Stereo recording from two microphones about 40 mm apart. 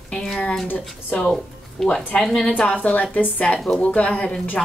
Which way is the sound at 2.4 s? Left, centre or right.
Left.